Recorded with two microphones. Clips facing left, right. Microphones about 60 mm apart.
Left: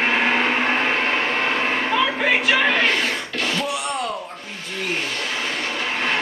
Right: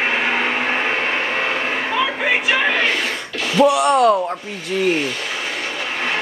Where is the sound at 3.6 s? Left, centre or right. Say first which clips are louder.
Right 12 dB; right.